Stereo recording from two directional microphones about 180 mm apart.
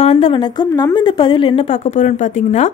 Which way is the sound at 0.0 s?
35° left (ahead or behind).